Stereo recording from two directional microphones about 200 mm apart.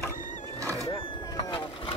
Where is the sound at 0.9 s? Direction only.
25° left (ahead or behind).